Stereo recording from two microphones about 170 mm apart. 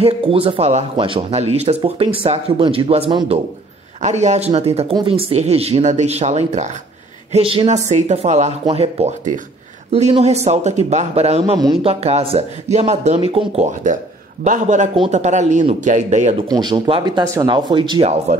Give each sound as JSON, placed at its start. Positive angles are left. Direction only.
{"t": 0.0, "sound": "speech", "side_deg": -35}
{"t": 16.4, "sound": "speech", "side_deg": -25}